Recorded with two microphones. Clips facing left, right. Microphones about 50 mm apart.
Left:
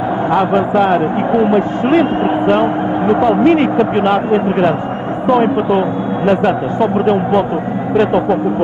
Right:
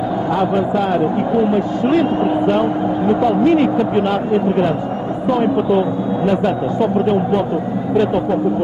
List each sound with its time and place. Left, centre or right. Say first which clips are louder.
0.3 s a man's voice: left 4 dB; left